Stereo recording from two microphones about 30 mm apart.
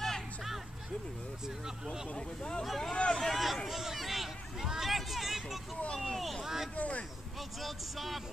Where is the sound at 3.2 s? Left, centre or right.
Centre.